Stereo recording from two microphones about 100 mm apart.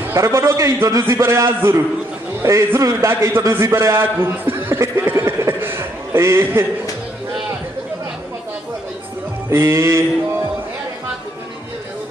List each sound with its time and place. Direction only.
0.0 s a man's voice: 30° right (ahead or behind)
9.5 s a man's voice: 30° right (ahead or behind)